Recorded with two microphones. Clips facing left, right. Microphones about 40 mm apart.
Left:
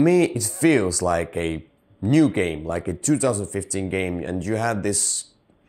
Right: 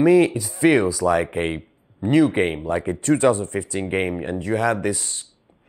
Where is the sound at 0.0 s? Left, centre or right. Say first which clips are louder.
Right 2 dB; centre.